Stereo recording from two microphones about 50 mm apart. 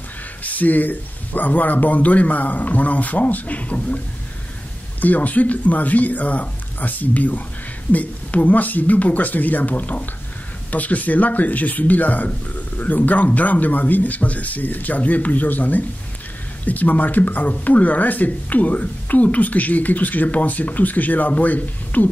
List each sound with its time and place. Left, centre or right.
0.4 s speech: left
5.0 s speech: left